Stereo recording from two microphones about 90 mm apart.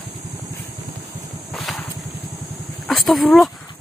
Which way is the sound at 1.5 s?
Centre (ahead or behind).